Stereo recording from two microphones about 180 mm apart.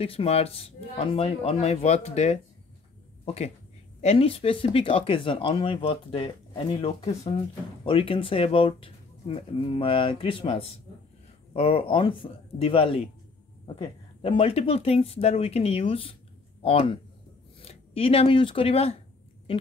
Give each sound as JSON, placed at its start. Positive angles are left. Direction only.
{"t": 0.0, "sound": "speech", "side_deg": 35}
{"t": 14.2, "sound": "speech", "side_deg": 30}